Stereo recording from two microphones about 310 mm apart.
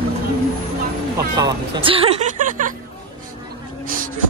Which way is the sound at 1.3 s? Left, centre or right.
Centre.